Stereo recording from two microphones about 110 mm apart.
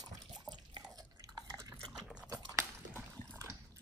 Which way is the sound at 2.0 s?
10° right (ahead or behind).